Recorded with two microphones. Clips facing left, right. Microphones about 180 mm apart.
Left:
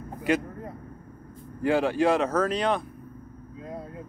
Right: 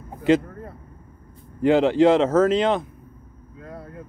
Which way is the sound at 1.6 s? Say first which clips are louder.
Right 7 dB; 20° right (ahead or behind).